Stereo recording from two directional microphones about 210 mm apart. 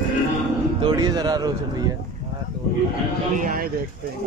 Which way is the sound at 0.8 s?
20° right (ahead or behind).